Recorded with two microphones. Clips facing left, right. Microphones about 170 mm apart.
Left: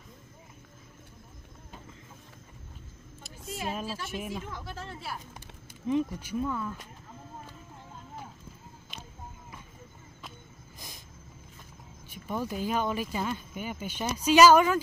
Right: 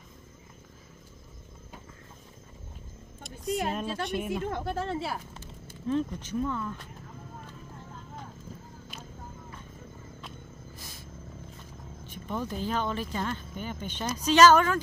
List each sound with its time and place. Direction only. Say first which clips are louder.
3.7 s a woman's voice: right 4 dB; 5° left (ahead or behind)
4.3 s speech: right 7 dB; 60° right (ahead or behind)
5.3 s speech: right 3 dB; 15° left (ahead or behind)
10.8 s vehicle: right 2 dB; 15° left (ahead or behind)
12.1 s speech: left 1 dB; 10° left (ahead or behind)